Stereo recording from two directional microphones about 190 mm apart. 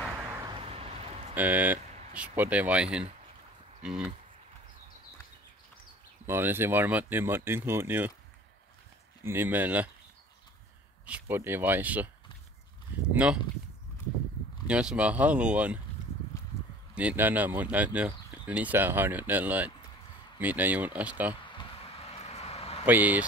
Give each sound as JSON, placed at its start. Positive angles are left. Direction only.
{"t": 0.1, "sound": "vehicle", "side_deg": -15}
{"t": 0.6, "sound": "vehicle", "side_deg": -30}
{"t": 1.3, "sound": "speech", "side_deg": -10}
{"t": 6.2, "sound": "speech", "side_deg": -10}
{"t": 9.2, "sound": "speech", "side_deg": -10}
{"t": 11.1, "sound": "speech", "side_deg": -10}
{"t": 13.1, "sound": "speech", "side_deg": -5}
{"t": 14.7, "sound": "speech", "side_deg": -5}
{"t": 16.9, "sound": "speech", "side_deg": -10}
{"t": 21.5, "sound": "a sound", "side_deg": 30}
{"t": 22.8, "sound": "speech", "side_deg": -10}